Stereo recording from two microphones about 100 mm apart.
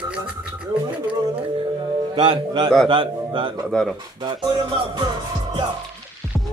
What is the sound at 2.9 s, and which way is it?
Speech, 60° right (ahead or behind).